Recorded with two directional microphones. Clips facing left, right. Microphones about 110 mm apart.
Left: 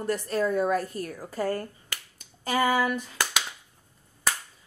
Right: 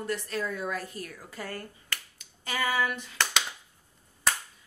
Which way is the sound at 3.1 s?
5° left (ahead or behind).